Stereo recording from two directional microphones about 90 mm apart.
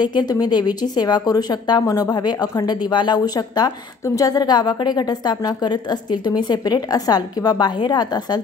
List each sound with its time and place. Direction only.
0.0 s a woman's voice: 55° left (ahead or behind)